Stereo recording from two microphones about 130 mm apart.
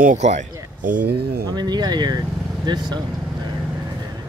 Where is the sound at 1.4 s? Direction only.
30° right (ahead or behind).